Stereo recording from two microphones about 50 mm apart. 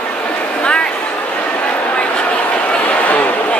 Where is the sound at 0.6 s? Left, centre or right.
Left.